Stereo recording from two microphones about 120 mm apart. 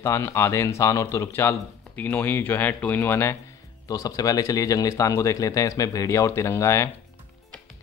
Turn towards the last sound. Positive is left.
turn(degrees=25)  # may be behind; listen again after turning